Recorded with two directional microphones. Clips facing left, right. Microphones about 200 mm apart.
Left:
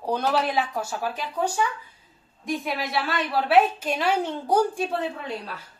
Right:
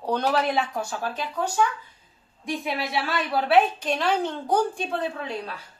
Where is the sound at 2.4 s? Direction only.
Centre (ahead or behind).